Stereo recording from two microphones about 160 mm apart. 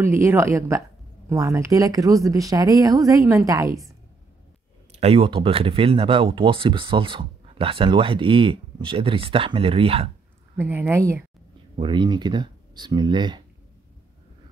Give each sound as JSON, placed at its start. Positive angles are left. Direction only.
{"t": 0.0, "sound": "a woman's voice", "side_deg": -15}
{"t": 5.0, "sound": "speech", "side_deg": -35}
{"t": 10.6, "sound": "a woman's voice", "side_deg": -15}
{"t": 11.7, "sound": "speech", "side_deg": -30}